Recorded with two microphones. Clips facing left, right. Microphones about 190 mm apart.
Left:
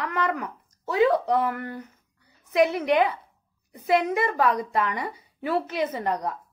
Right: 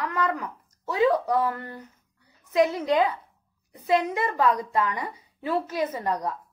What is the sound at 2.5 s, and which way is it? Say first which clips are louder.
Speech: left 1 dB; 20° left (ahead or behind).